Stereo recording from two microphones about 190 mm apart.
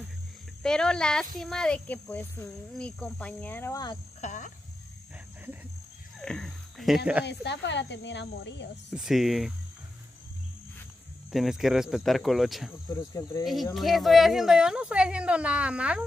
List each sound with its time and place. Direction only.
0.6 s speech: 5° left (ahead or behind); by 4.0 s 20° left (ahead or behind)
4.2 s speech: 40° left (ahead or behind)
6.1 s cricket: 5° left (ahead or behind)
7.2 s speech: 65° left (ahead or behind)
8.9 s speech: centre (ahead or behind)
11.3 s speech: centre (ahead or behind)
12.9 s cricket: 15° left (ahead or behind)
13.7 s speech: centre (ahead or behind)